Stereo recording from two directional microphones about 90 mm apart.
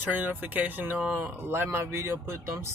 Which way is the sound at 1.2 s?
25° right (ahead or behind).